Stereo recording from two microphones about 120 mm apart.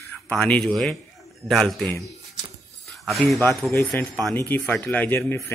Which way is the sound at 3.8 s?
5° left (ahead or behind).